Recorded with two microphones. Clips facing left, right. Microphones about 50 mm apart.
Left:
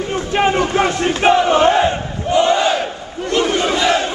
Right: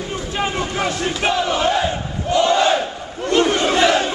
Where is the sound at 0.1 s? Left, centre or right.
Left.